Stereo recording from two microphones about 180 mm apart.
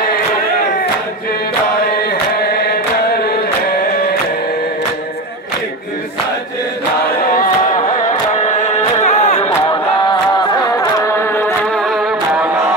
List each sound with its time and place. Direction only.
8.1 s music: 40° left (ahead or behind)
10.8 s music: 20° left (ahead or behind)
11.7 s music: centre (ahead or behind)